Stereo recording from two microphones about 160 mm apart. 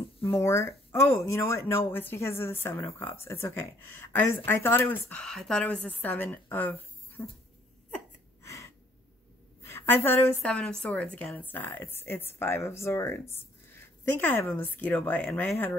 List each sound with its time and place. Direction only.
0.2 s speech: 15° left (ahead or behind)
7.9 s gasp: 15° left (ahead or behind)
9.6 s speech: 15° left (ahead or behind)